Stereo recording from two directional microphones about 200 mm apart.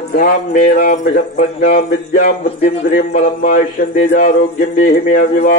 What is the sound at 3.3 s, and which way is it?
A man's voice, 45° left (ahead or behind).